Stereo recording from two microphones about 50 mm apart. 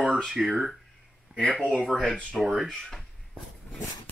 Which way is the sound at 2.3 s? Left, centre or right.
Centre.